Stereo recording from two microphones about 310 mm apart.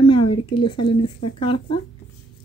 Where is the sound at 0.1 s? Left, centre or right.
Centre.